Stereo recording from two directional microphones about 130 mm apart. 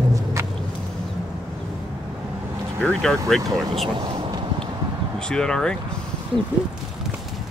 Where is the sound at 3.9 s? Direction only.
40° right (ahead or behind).